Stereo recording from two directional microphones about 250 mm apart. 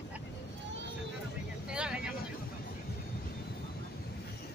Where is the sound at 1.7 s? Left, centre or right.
Centre.